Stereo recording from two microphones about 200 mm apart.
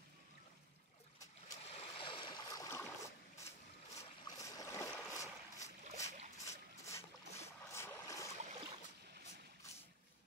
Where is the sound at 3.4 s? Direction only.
15° left (ahead or behind).